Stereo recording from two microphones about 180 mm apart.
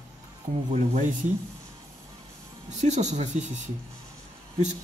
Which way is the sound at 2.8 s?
40° right (ahead or behind).